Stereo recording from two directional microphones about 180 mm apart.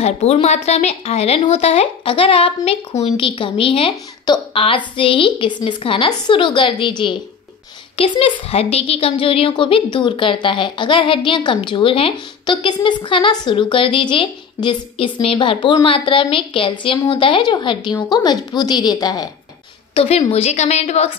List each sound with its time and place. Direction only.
0.0 s a woman's voice: 35° left (ahead or behind)
19.9 s speech: 35° left (ahead or behind)